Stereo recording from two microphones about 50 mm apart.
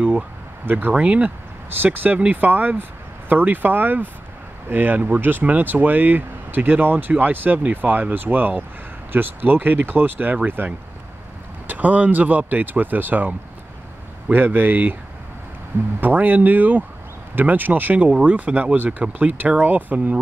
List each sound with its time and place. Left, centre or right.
0.7 s speech: right
0.9 s speech: right
2.3 s speech: right
16.0 s speech: right